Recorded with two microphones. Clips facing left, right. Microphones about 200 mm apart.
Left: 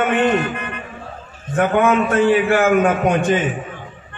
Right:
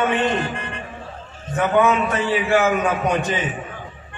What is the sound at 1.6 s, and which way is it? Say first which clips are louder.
A man's voice: left 2 dB; 50° left (ahead or behind).